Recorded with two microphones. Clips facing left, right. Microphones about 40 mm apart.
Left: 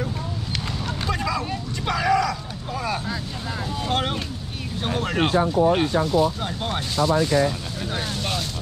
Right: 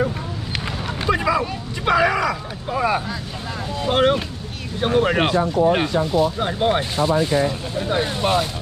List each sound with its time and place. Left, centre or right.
0.8 s a sound: centre
1.4 s vehicle: centre
3.8 s speech: centre
5.9 s speech: centre
6.4 s speech: right